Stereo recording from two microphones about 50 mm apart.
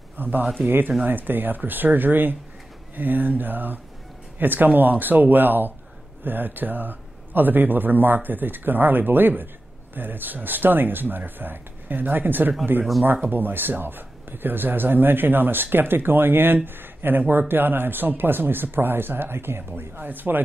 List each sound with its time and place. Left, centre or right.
0.2 s a man's voice: right
20.0 s a man's voice: right